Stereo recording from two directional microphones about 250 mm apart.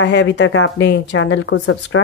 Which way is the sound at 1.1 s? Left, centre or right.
Left.